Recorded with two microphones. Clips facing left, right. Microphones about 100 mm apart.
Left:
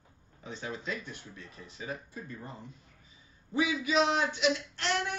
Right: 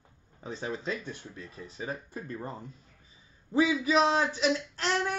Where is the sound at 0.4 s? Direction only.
35° right (ahead or behind).